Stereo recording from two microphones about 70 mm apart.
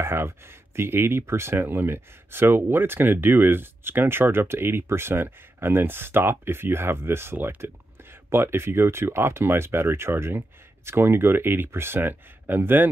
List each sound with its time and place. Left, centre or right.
0.0 s speech: right